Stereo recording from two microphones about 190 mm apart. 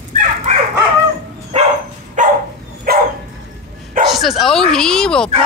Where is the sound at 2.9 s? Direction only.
50° right (ahead or behind).